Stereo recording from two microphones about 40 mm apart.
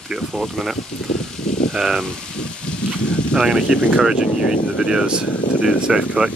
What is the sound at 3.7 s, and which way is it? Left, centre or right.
Speech, centre.